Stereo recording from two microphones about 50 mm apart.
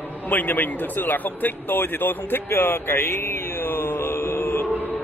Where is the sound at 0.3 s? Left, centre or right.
Left.